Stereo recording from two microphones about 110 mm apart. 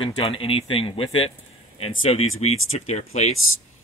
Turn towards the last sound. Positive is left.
turn(degrees=75)  # may be behind; listen again after turning